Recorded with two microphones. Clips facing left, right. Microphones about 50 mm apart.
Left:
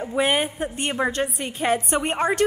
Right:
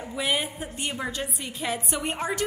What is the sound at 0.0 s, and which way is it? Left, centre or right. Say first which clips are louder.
A woman's voice: left 6 dB; left.